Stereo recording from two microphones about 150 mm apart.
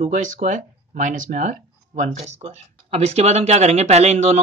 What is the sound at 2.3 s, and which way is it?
Speech, 45° right (ahead or behind).